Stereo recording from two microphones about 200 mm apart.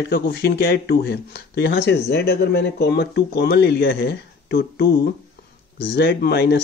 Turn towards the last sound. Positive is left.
turn(degrees=55)  # may be behind; listen again after turning